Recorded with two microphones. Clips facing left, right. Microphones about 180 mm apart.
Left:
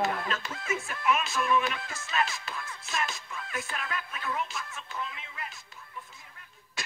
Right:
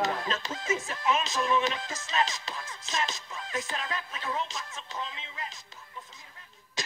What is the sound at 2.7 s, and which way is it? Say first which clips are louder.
Music: right 1 dB; 20° right (ahead or behind).